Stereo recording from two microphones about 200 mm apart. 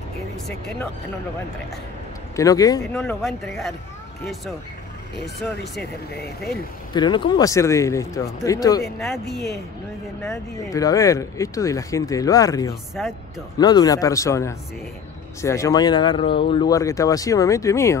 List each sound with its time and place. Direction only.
2.3 s speech: 15° left (ahead or behind)
2.8 s speech: 5° left (ahead or behind)
5.2 s speech: 55° left (ahead or behind)
6.9 s speech: 20° left (ahead or behind)
10.7 s speech: 15° left (ahead or behind)
13.0 s speech: 5° left (ahead or behind)
13.6 s speech: 20° left (ahead or behind)